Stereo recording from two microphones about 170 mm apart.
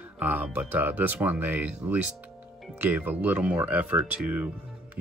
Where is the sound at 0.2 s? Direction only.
10° right (ahead or behind).